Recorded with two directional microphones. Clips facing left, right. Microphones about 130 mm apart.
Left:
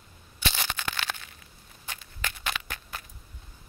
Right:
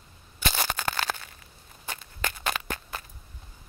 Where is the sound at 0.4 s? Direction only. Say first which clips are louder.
Right 3 dB; 45° right (ahead or behind).